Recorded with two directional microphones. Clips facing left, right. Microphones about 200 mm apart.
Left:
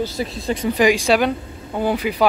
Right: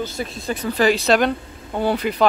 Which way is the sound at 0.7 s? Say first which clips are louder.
Even; 15° left (ahead or behind).